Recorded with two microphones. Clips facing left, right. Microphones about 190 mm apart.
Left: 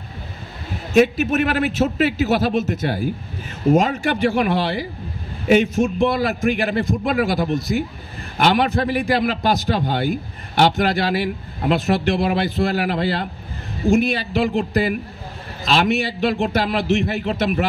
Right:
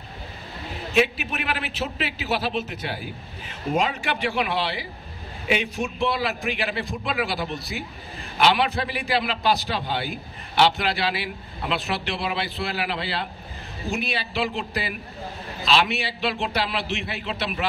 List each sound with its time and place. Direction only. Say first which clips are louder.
0.9 s a man's voice: left 8 dB; 45° left (ahead or behind)